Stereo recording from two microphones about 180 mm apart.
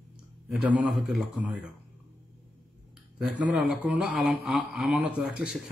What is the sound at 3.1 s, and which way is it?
A man's voice, centre (ahead or behind).